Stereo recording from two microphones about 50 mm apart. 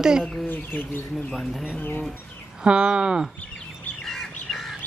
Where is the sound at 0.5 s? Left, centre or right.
Left.